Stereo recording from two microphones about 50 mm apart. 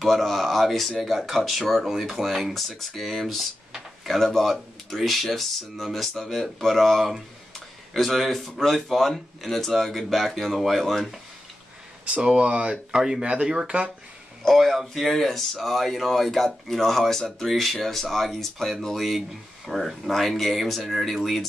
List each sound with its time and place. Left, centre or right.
0.0 s speech: centre
12.0 s speech: right
14.4 s speech: centre